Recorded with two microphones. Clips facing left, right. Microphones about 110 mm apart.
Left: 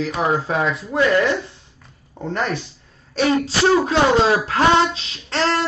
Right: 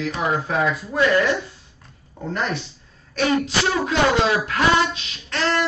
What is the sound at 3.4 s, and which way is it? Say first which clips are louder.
Speech: left 5 dB; 30° left (ahead or behind).